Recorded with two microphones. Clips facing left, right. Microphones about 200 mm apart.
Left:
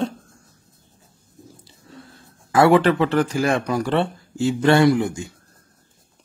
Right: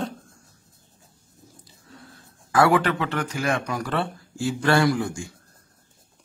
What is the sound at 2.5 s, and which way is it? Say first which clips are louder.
Speech: left 5 dB; 25° left (ahead or behind).